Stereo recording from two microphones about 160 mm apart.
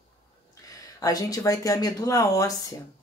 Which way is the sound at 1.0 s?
20° left (ahead or behind).